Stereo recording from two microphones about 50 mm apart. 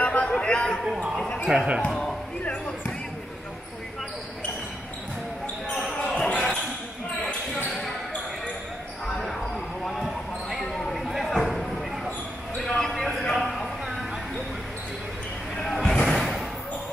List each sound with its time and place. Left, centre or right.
0.0 s a sound: left
1.5 s speech: centre
5.9 s basketball bounce: left
7.5 s basketball bounce: centre
9.8 s basketball bounce: centre
12.5 s a sound: centre
15.8 s slam: centre
16.2 s basketball bounce: centre